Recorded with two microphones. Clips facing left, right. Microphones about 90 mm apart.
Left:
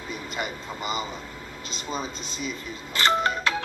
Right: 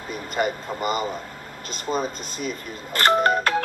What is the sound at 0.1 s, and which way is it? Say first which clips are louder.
Speech: right 8 dB; 50° right (ahead or behind).